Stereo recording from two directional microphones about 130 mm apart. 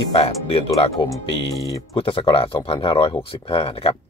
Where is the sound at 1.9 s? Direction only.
45° left (ahead or behind).